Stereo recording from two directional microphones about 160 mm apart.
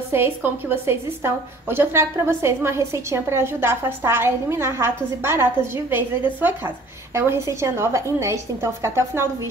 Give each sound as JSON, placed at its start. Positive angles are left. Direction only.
{"t": 0.1, "sound": "a woman's voice", "side_deg": -15}